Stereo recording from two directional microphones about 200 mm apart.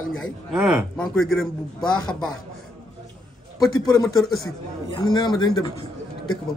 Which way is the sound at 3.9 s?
20° left (ahead or behind).